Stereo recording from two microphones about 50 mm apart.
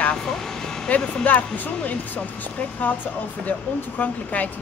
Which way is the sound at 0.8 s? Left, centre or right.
Left.